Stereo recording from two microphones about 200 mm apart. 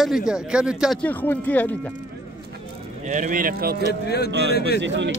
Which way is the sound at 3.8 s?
55° left (ahead or behind).